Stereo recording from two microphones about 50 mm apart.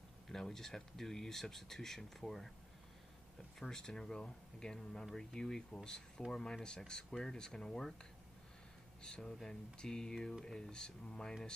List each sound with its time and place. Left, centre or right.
0.3 s speech: centre
3.5 s speech: centre